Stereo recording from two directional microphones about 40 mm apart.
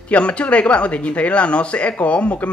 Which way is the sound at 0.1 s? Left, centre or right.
Left.